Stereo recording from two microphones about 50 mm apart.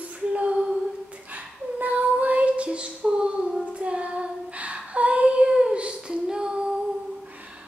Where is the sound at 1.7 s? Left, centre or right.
Right.